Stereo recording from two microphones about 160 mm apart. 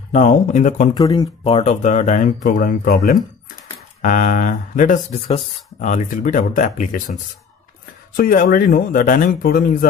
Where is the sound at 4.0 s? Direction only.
55° left (ahead or behind).